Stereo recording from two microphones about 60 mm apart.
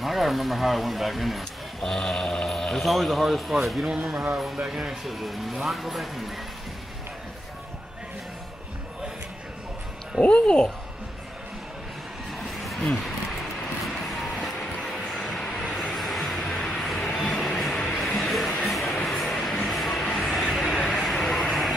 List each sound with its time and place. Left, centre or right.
0.0 s speech: centre
10.2 s speech: centre
12.6 s vehicle: centre
18.7 s music: centre
19.0 s vehicle: centre
19.5 s music: centre
20.1 s vehicle: centre